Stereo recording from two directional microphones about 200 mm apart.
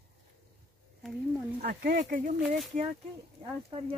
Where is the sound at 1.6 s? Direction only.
50° right (ahead or behind).